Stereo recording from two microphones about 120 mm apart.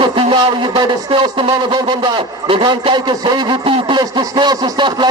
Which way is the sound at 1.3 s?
40° right (ahead or behind).